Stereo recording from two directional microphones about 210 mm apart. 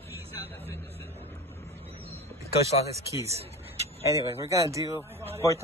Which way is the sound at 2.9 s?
15° right (ahead or behind).